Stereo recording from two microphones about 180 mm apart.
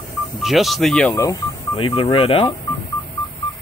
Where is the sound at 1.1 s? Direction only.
15° left (ahead or behind).